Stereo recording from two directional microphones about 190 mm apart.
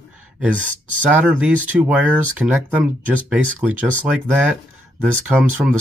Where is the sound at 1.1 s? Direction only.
10° right (ahead or behind).